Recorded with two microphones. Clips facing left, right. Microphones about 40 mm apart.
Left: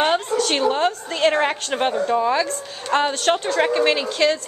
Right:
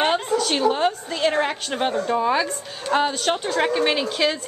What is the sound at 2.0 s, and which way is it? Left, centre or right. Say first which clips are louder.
Speech: left 1 dB; centre.